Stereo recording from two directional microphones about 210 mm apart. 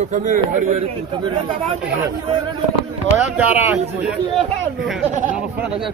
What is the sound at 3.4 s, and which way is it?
Speech, 5° right (ahead or behind).